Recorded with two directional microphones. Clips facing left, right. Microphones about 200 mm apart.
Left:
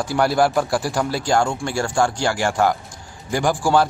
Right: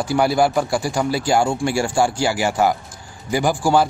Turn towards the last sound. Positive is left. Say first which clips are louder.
# right 1 dB
turn(degrees=-5)  # may be behind; listen again after turning